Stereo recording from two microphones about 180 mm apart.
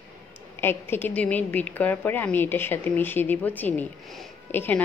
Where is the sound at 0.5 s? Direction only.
10° left (ahead or behind).